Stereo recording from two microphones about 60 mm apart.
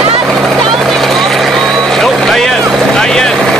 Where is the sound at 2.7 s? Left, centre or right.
Centre.